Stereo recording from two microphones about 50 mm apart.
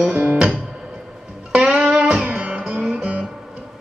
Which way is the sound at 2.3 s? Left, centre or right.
Right.